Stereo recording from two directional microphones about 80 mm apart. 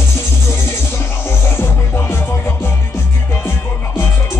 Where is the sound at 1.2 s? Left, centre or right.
Left.